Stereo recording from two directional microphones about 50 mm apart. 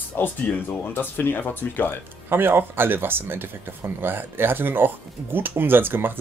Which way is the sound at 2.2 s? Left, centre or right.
Right.